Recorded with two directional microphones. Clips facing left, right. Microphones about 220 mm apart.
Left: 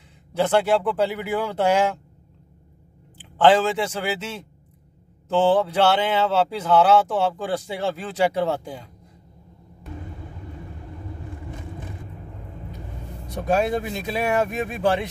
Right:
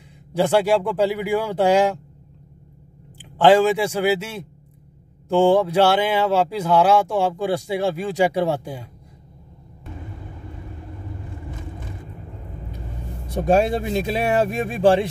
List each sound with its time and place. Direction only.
0.4 s speech: 10° right (ahead or behind)
3.2 s speech: 10° right (ahead or behind)
13.3 s speech: 30° right (ahead or behind)